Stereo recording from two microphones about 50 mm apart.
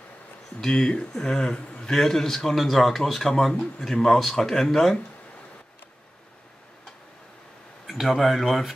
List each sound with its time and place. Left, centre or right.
0.6 s a man's voice: centre
7.8 s speech: centre